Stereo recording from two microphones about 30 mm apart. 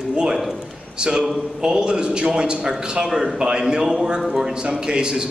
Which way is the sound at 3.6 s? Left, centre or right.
Centre.